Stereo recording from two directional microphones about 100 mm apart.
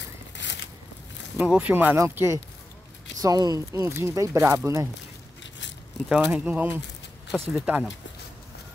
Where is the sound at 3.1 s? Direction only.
40° right (ahead or behind).